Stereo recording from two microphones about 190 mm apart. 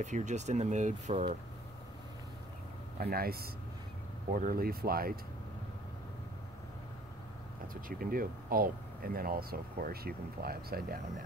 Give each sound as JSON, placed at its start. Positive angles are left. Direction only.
{"t": 0.0, "sound": "speech", "side_deg": -40}
{"t": 3.0, "sound": "speech", "side_deg": -50}
{"t": 7.6, "sound": "speech", "side_deg": -50}